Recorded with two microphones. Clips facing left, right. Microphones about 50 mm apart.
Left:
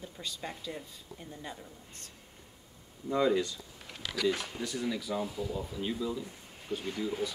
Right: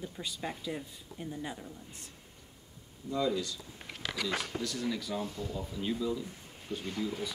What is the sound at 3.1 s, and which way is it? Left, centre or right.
Speech, left.